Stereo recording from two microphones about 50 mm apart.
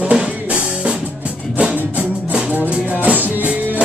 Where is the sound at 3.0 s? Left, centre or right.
Right.